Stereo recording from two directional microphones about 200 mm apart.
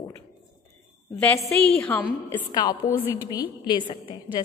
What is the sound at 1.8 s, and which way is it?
Speech, 10° left (ahead or behind).